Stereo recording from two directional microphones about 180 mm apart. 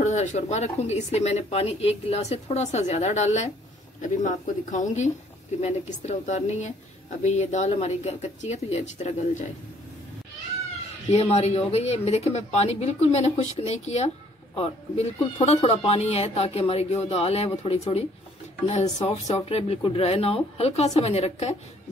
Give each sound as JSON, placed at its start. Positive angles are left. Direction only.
{"t": 0.0, "sound": "speech", "side_deg": 40}
{"t": 11.1, "sound": "speech", "side_deg": 35}